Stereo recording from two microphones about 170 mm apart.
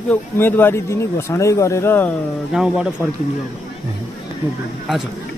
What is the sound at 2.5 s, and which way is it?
Speech, 5° right (ahead or behind).